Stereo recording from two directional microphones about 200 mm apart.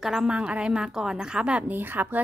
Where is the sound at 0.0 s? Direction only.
5° right (ahead or behind).